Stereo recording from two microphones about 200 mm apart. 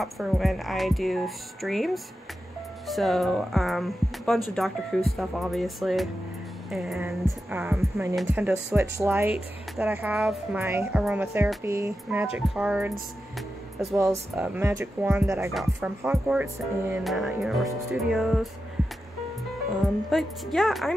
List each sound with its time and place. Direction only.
0.0 s speech: centre (ahead or behind)
2.9 s speech: centre (ahead or behind)
7.5 s speech: 15° right (ahead or behind)
20.1 s speech: centre (ahead or behind)